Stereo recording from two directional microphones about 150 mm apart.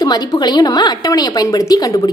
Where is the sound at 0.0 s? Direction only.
25° left (ahead or behind).